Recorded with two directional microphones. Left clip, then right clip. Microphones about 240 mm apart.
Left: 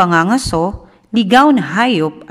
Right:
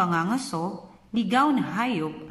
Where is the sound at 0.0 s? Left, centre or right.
Left.